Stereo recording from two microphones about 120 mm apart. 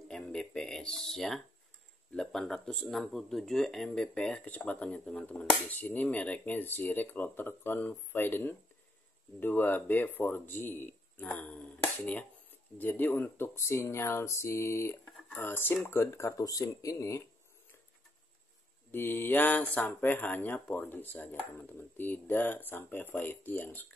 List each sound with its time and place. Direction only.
0.1 s a sound: 5° left (ahead or behind)
2.1 s speech: 5° left (ahead or behind); by 17.2 s 25° left (ahead or behind)
18.9 s speech: 15° left (ahead or behind)